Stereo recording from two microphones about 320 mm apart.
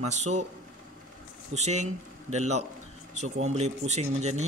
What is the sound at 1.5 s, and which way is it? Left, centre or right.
Speech, right.